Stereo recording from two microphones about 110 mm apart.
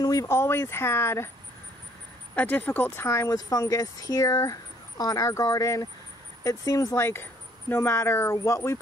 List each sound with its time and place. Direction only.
0.0 s a sound: 30° left (ahead or behind)
0.3 s speech: 20° left (ahead or behind)
2.3 s speech: 15° left (ahead or behind)